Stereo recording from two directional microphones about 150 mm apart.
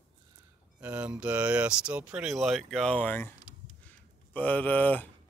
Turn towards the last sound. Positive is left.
turn(degrees=10)  # may be behind; listen again after turning